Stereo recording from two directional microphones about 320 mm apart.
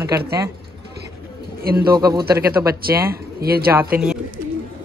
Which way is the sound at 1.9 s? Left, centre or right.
Centre.